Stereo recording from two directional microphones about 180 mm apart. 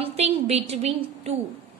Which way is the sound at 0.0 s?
35° right (ahead or behind).